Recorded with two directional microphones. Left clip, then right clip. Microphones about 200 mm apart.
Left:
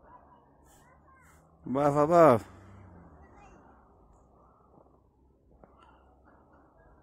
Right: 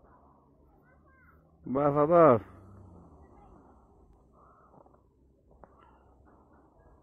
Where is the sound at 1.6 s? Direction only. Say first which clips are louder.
Left 1 dB; 25° left (ahead or behind).